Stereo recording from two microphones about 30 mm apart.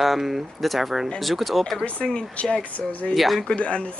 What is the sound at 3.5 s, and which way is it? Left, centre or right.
Speech, left.